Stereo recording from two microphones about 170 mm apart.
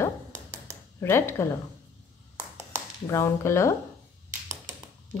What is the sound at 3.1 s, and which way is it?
Speech, 15° left (ahead or behind).